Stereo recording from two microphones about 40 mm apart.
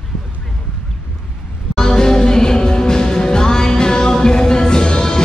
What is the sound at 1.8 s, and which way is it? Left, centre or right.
Music, centre.